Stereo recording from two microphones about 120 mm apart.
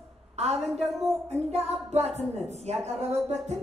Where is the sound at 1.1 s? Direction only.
65° right (ahead or behind).